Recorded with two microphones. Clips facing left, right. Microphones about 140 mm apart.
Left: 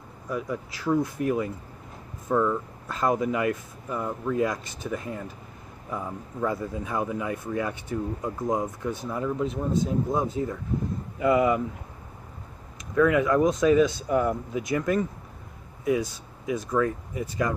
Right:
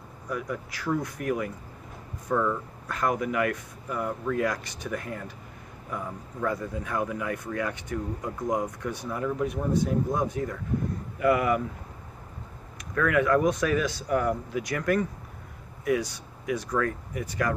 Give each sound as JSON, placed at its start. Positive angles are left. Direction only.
{"t": 0.3, "sound": "speech", "side_deg": 25}
{"t": 12.9, "sound": "speech", "side_deg": 20}